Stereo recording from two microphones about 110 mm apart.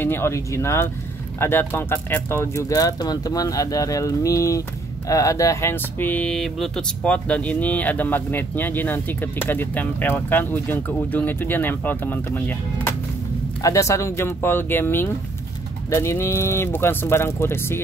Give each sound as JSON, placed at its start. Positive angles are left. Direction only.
{"t": 0.0, "sound": "speech", "side_deg": 20}
{"t": 6.3, "sound": "a sound", "side_deg": 0}
{"t": 7.0, "sound": "speech", "side_deg": 10}
{"t": 13.6, "sound": "speech", "side_deg": 30}